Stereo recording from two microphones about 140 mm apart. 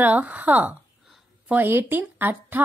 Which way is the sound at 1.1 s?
10° right (ahead or behind).